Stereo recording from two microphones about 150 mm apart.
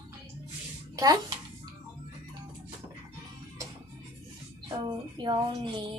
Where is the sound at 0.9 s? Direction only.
25° right (ahead or behind).